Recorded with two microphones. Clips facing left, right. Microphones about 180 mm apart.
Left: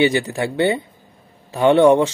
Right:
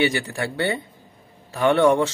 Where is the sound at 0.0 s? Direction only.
20° left (ahead or behind).